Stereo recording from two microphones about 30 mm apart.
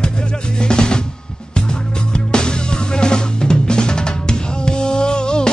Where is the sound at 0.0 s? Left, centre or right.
Left.